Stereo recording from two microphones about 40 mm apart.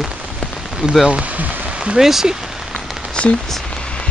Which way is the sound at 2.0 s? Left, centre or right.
Centre.